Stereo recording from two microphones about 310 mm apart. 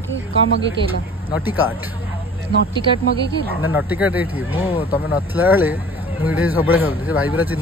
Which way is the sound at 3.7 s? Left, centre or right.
Centre.